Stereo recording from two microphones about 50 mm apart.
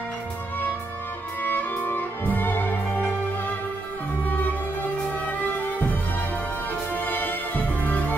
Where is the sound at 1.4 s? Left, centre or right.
Left.